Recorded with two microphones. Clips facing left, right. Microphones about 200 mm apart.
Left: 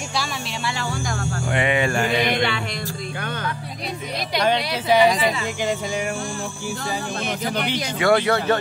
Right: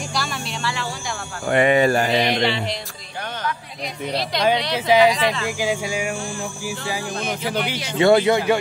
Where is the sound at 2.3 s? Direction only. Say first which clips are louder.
Right 2 dB; 50° left (ahead or behind).